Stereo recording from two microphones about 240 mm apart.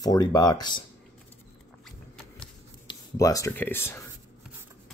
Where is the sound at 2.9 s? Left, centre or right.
Centre.